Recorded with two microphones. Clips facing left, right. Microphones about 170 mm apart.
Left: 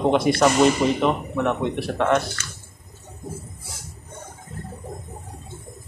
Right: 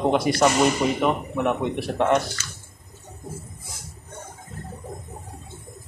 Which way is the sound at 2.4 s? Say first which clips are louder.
Left 1 dB; 50° left (ahead or behind).